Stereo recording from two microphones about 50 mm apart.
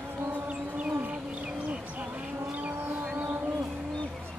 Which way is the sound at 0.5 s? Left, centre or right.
Right.